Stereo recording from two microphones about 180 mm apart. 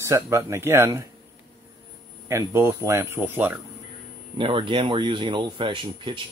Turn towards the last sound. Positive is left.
turn(degrees=-25)  # may be behind; listen again after turning